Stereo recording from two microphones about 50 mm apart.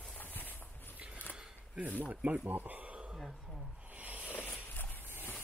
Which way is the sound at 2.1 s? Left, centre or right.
Right.